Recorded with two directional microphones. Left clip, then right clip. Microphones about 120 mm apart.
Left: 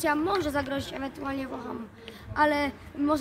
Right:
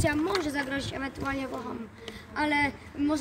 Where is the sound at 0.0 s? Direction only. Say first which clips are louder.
Left 1 dB; 40° left (ahead or behind).